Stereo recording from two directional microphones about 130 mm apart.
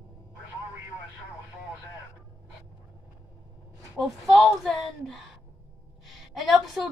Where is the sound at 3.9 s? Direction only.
Centre (ahead or behind).